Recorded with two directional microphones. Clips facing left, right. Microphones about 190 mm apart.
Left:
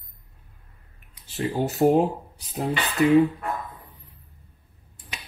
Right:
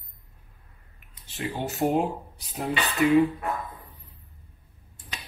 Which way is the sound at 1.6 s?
40° left (ahead or behind).